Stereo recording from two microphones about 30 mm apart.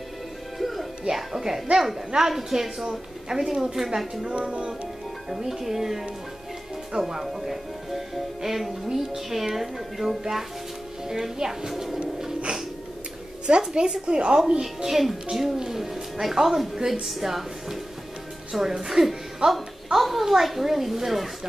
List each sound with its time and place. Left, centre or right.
0.6 s music: centre
1.0 s a woman's voice: centre
1.4 s a woman's voice: right
4.3 s music: right
5.4 s a woman's voice: centre
11.7 s music: centre
13.6 s speech: right
14.6 s a woman's voice: centre